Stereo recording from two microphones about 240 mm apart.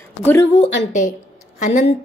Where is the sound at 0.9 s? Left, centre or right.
Left.